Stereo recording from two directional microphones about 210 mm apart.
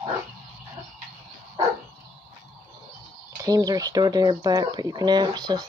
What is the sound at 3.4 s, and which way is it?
Speech, 15° right (ahead or behind).